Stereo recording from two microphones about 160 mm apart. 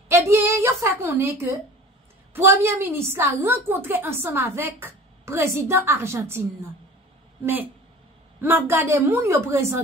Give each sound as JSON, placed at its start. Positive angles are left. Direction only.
{"t": 0.1, "sound": "a sound", "side_deg": -15}
{"t": 2.3, "sound": "a woman's voice", "side_deg": -15}
{"t": 8.4, "sound": "a woman's voice", "side_deg": -15}